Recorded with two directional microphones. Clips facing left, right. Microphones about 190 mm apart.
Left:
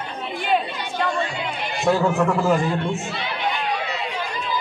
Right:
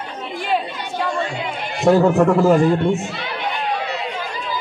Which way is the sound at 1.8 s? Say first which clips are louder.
Right 6 dB; 45° right (ahead or behind).